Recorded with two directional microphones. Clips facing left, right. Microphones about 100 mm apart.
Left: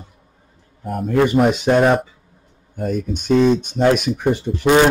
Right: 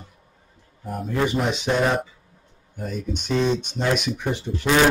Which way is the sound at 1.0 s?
55° left (ahead or behind).